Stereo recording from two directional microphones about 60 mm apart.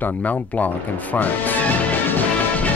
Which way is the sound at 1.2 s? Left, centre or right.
Left.